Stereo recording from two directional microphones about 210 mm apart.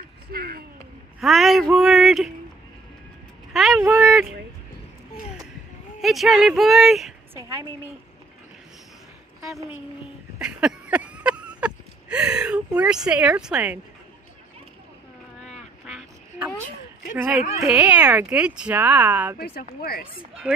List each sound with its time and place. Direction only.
0.3 s a sound: 45° right (ahead or behind)
1.2 s speech: centre (ahead or behind)
3.5 s vehicle: centre (ahead or behind)
3.9 s a sound: 5° right (ahead or behind)
5.9 s speech: centre (ahead or behind)
7.3 s speech: 15° right (ahead or behind)
10.4 s a sound: 5° right (ahead or behind)
15.8 s duck: 5° right (ahead or behind)
17.6 s speech: 10° right (ahead or behind)
19.3 s speech: 45° left (ahead or behind)